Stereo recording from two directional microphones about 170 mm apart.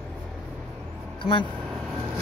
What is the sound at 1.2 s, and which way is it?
Speech, 30° left (ahead or behind).